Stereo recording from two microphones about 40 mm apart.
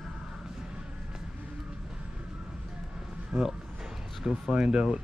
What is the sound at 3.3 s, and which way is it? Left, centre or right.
Speech, right.